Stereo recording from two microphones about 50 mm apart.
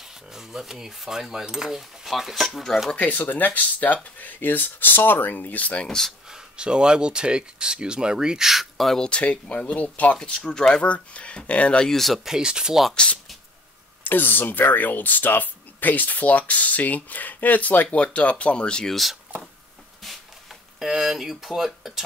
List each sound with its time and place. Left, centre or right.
0.3 s speech: centre
2.4 s speech: centre
3.0 s speech: left
5.9 s speech: centre
6.3 s speech: centre
9.0 s speech: left
10.2 s speech: centre
11.8 s speech: centre
12.3 s speech: centre
12.9 s speech: left
14.0 s speech: left; by 18.9 s centre
18.9 s speech: centre
20.8 s speech: centre